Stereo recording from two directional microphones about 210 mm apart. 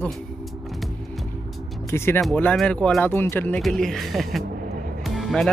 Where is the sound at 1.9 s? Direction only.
10° left (ahead or behind).